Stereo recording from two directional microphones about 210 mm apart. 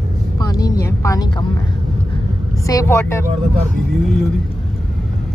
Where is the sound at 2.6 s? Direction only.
15° left (ahead or behind).